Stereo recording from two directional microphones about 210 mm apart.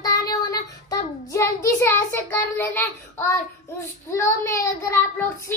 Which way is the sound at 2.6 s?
10° left (ahead or behind).